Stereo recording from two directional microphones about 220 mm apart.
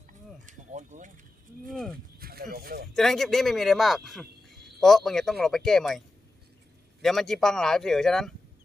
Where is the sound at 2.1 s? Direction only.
40° right (ahead or behind).